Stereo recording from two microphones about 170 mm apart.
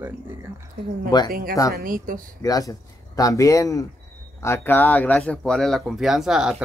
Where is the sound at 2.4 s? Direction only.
20° left (ahead or behind).